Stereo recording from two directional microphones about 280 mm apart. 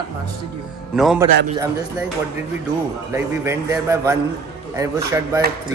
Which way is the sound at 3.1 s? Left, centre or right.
Centre.